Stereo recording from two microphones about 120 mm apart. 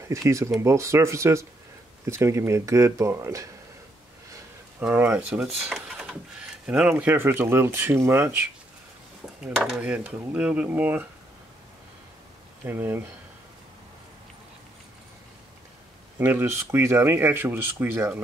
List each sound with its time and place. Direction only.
0.1 s speech: 25° right (ahead or behind)
4.9 s speech: 15° right (ahead or behind)
9.8 s speech: 10° right (ahead or behind)
12.6 s speech: 20° right (ahead or behind)
16.2 s speech: 20° right (ahead or behind)